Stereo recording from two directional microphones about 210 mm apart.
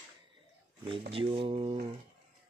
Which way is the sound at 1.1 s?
25° right (ahead or behind).